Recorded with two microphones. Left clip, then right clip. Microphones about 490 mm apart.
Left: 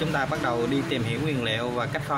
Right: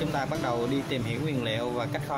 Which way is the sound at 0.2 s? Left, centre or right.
Right.